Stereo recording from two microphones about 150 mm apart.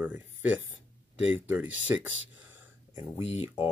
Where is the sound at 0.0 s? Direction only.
10° right (ahead or behind).